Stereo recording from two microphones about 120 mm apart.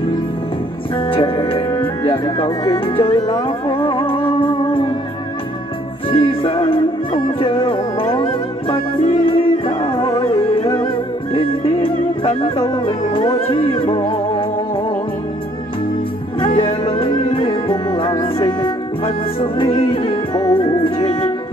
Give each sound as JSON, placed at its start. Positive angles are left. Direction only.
{"t": 0.9, "sound": "music", "side_deg": 50}
{"t": 6.0, "sound": "music", "side_deg": 45}
{"t": 16.3, "sound": "music", "side_deg": 45}